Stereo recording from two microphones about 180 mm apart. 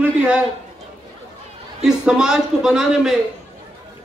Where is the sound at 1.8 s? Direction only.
5° right (ahead or behind).